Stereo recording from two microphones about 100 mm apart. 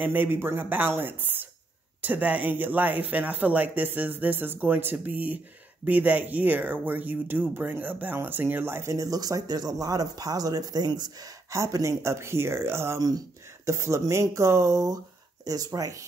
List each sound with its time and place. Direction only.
0.0 s speech: 20° right (ahead or behind)